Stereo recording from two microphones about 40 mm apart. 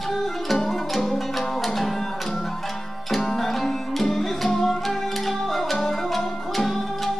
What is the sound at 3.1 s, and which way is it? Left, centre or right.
Music, centre.